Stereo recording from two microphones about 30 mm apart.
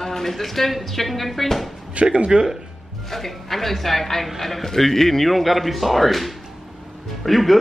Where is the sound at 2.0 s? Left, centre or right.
Right.